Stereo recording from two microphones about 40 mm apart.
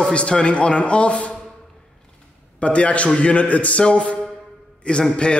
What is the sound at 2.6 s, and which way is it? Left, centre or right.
A man's voice, left.